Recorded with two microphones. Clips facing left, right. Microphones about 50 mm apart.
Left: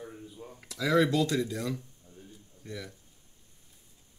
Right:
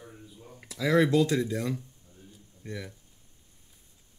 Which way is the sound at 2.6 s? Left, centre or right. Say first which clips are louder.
Right 2 dB; right.